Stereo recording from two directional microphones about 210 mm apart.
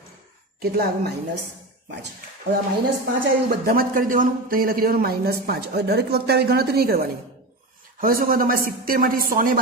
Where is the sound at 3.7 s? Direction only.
40° right (ahead or behind).